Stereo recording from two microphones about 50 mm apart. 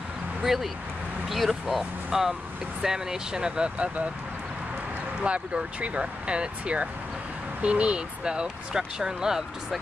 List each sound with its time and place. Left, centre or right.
0.4 s speech: centre; by 4.1 s right
5.2 s speech: right